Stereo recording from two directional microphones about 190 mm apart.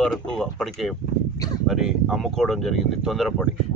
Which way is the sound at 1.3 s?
20° left (ahead or behind).